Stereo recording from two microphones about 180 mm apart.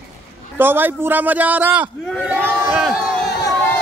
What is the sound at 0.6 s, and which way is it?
Speech, 10° right (ahead or behind).